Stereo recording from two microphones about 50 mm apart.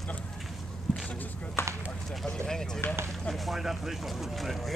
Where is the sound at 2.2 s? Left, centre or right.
Centre.